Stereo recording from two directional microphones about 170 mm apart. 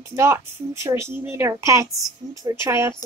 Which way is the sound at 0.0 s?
15° right (ahead or behind).